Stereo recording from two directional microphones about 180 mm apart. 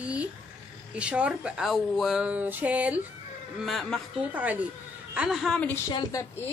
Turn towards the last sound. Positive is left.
turn(degrees=20)  # may be behind; listen again after turning